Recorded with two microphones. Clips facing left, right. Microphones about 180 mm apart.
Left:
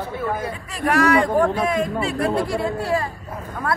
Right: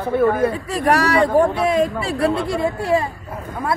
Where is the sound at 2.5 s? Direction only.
20° right (ahead or behind).